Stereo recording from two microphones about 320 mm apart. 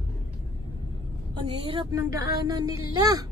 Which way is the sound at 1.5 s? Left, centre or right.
Centre.